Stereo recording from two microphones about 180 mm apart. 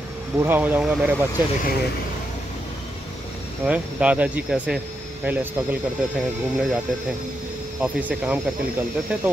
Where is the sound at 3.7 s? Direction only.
5° right (ahead or behind).